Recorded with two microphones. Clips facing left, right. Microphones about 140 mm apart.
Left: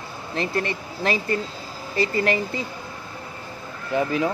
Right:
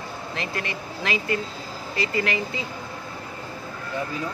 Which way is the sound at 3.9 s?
70° left (ahead or behind).